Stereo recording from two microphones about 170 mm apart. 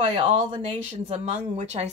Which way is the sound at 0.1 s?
35° right (ahead or behind).